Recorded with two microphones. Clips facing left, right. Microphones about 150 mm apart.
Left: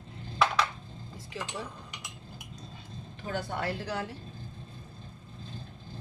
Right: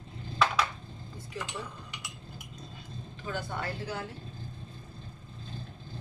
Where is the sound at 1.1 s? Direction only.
90° left.